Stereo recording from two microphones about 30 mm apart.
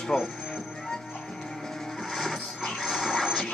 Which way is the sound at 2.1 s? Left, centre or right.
Centre.